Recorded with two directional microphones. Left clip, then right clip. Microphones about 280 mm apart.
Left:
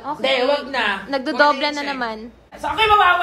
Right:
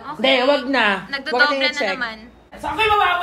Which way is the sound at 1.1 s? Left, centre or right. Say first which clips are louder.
Left 1 dB; left.